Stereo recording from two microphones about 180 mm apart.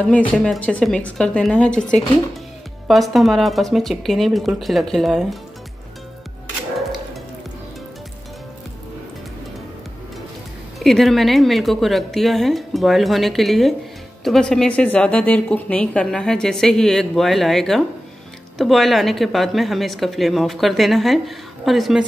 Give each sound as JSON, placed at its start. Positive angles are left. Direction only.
{"t": 0.3, "sound": "a woman's voice", "side_deg": 5}
{"t": 10.8, "sound": "a woman's voice", "side_deg": 0}